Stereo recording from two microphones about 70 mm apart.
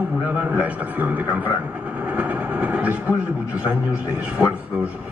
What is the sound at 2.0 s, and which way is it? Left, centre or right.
Vehicle, right.